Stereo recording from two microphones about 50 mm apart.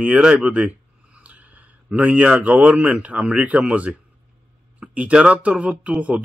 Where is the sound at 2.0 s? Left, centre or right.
Right.